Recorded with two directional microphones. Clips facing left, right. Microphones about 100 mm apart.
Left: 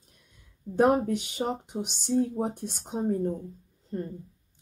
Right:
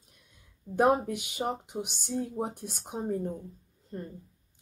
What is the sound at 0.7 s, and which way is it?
Speech, 15° right (ahead or behind).